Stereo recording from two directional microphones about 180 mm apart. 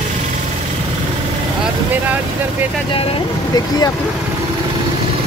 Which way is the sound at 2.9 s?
35° left (ahead or behind).